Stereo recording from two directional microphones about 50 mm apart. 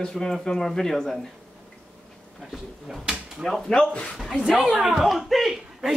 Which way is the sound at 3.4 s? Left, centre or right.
Centre.